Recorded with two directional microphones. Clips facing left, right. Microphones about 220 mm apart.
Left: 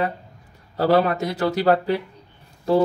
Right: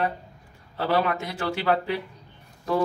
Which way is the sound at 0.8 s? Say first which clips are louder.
Left 6 dB; 40° left (ahead or behind).